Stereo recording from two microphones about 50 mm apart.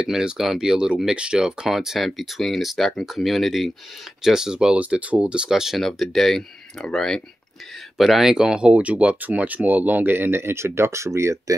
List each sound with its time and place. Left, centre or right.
0.0 s speech: centre
4.7 s speech: right; by 5.8 s centre
5.8 s speech: centre
8.0 s speech: centre; by 11.3 s right